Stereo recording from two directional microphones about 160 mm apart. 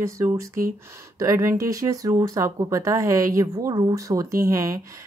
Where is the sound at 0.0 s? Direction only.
20° right (ahead or behind).